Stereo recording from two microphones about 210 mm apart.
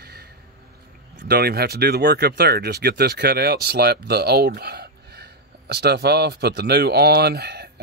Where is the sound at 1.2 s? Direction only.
50° right (ahead or behind).